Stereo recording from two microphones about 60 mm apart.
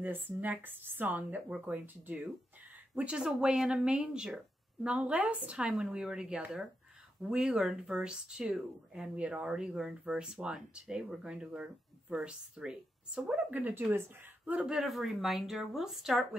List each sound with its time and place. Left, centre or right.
0.0 s a woman's voice: right; by 9.1 s centre
9.1 s speech: centre
13.5 s a woman's voice: right
14.8 s speech: centre